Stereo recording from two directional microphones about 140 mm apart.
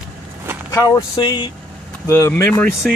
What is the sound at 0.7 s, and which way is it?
Speech, 25° left (ahead or behind).